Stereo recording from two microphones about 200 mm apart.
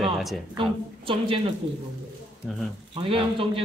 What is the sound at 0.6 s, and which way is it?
Speech, 25° right (ahead or behind).